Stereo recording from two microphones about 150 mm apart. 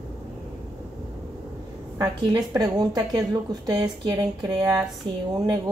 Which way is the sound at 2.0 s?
30° right (ahead or behind).